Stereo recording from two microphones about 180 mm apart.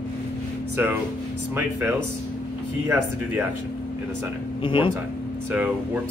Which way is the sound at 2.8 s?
15° right (ahead or behind).